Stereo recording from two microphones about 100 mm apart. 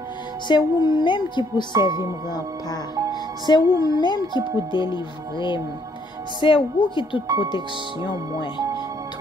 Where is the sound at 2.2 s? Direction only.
45° left (ahead or behind).